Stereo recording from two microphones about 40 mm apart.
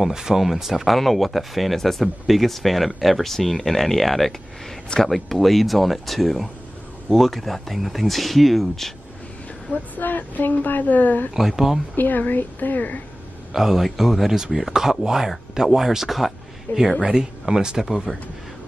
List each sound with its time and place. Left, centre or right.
0.0 s speech: centre
9.9 s a woman's voice: left
11.3 s speech: centre
11.9 s a woman's voice: left
13.5 s speech: centre
16.7 s speech: left
17.1 s speech: centre